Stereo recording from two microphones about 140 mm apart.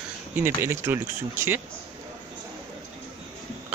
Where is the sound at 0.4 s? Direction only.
15° right (ahead or behind).